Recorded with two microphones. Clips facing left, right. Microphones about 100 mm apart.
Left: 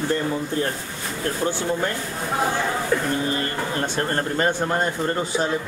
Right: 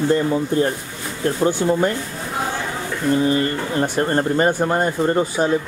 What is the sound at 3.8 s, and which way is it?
Speech, 10° right (ahead or behind).